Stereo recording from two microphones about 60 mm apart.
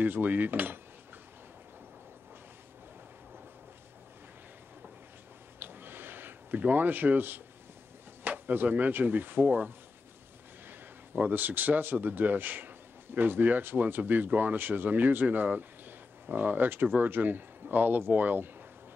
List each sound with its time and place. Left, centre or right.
0.0 s speech: right
5.6 s a sound: right
8.2 s speech: right
10.7 s speech: right